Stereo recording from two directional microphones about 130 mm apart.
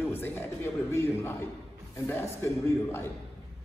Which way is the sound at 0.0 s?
15° left (ahead or behind).